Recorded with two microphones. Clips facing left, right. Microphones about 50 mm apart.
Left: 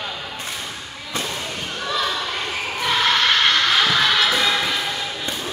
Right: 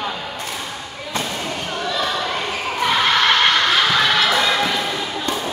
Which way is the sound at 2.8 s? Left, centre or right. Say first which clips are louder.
Right 2 dB; centre.